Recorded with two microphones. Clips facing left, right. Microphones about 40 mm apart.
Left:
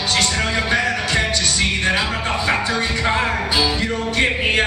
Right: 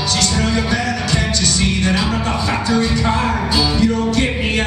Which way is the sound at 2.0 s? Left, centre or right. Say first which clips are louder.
Right 1 dB; left.